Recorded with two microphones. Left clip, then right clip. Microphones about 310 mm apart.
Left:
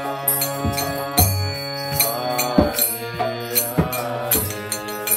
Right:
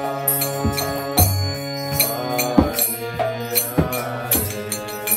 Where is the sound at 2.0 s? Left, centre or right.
Left.